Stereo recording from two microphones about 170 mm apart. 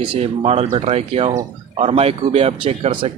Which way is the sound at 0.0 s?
30° right (ahead or behind).